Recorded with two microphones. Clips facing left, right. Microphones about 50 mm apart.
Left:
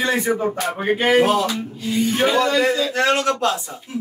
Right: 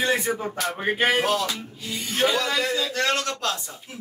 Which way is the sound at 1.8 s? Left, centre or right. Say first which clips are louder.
Left 11 dB; centre.